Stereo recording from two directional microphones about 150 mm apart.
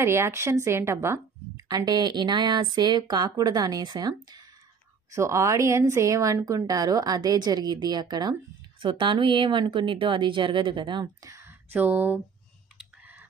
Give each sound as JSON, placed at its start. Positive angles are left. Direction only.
{"t": 0.0, "sound": "a woman's voice", "side_deg": -15}
{"t": 5.1, "sound": "a woman's voice", "side_deg": -20}
{"t": 12.7, "sound": "clicking", "side_deg": -10}